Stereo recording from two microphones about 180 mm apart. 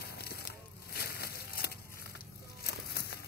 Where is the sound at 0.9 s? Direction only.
60° left (ahead or behind).